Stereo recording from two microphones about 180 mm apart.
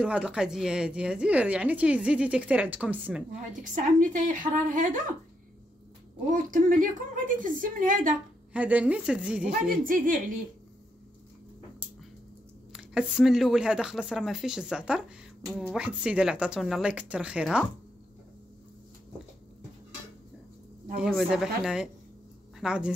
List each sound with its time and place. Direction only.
0.0 s a woman's voice: 5° right (ahead or behind)
3.6 s a woman's voice: 45° right (ahead or behind)
6.3 s a woman's voice: 45° right (ahead or behind)
8.5 s a woman's voice: 10° right (ahead or behind)
9.8 s a woman's voice: 50° right (ahead or behind)
12.7 s speech: 5° right (ahead or behind)
21.0 s speech: 5° right (ahead or behind)